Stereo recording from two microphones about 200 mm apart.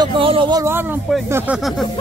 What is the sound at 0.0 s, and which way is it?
Speech, 25° right (ahead or behind).